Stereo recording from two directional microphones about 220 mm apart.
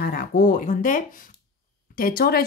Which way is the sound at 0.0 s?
40° left (ahead or behind).